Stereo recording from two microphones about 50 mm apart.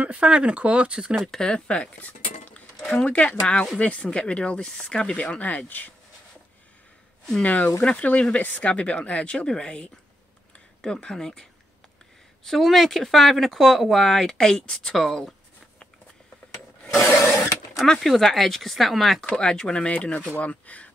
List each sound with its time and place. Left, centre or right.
0.0 s speech: right
1.3 s dishes: centre
2.9 s speech: centre; by 5.9 s left
7.4 s speech: left; by 11.4 s centre
12.4 s speech: centre
17.8 s speech: centre
19.2 s speech: centre
19.9 s speech: left